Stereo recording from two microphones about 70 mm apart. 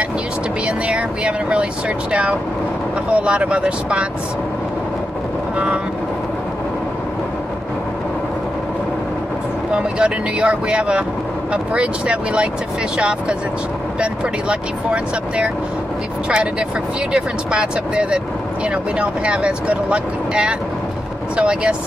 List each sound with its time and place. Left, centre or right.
0.7 s vehicle: centre
3.1 s speech: centre
9.8 s speech: centre